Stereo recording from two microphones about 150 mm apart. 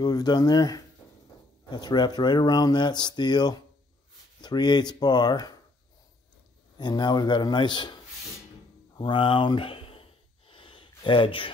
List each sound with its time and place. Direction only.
0.0 s speech: 25° left (ahead or behind)
6.8 s speech: 30° left (ahead or behind)
8.9 s a sound: 30° left (ahead or behind)